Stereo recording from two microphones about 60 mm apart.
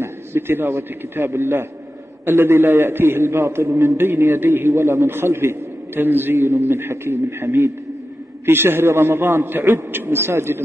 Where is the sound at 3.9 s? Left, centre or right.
Right.